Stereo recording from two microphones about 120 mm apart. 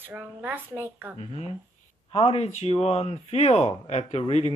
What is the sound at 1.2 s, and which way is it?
Speech, 55° left (ahead or behind).